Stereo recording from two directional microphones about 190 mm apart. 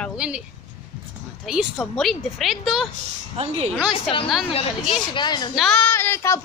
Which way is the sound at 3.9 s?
30° left (ahead or behind).